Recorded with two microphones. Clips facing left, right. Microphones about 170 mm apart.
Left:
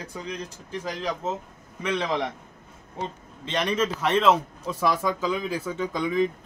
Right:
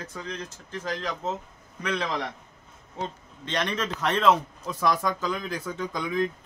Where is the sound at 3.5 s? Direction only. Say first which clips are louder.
Left 4 dB; 5° left (ahead or behind).